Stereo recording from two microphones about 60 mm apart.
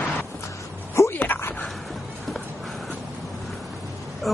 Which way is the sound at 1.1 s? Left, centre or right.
Left.